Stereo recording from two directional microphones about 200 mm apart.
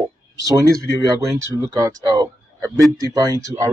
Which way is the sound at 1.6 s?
15° right (ahead or behind).